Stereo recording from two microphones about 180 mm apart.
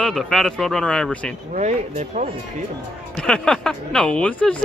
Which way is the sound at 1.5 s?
40° right (ahead or behind).